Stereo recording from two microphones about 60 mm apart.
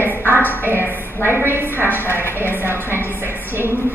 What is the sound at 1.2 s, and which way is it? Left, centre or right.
Speech, right.